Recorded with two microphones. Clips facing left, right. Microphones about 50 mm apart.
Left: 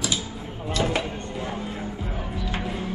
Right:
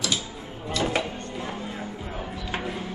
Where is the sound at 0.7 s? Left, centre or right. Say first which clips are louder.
Left 1 dB; centre.